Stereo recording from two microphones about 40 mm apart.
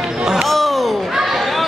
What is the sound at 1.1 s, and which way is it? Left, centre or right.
Basketball bounce, centre.